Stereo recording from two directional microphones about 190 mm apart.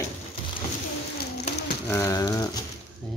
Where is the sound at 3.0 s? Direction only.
Centre (ahead or behind).